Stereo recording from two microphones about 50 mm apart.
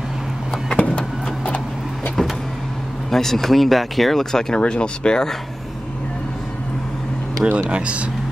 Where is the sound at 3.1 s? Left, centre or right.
Centre.